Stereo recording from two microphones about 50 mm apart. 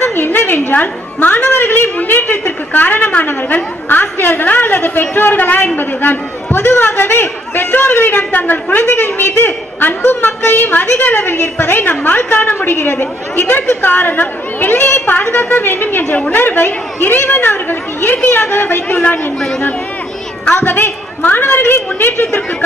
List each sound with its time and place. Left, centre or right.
0.0 s a woman's voice: left
8.2 s a woman's voice: left
20.5 s a woman's voice: left